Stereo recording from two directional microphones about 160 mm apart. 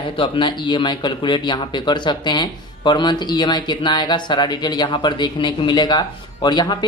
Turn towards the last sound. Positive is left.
turn(degrees=25)  # may be behind; listen again after turning